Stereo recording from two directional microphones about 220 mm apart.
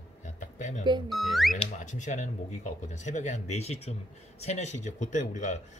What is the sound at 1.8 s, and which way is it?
Speech, 35° left (ahead or behind).